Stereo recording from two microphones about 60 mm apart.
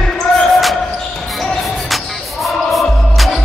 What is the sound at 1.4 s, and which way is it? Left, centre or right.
Music, centre.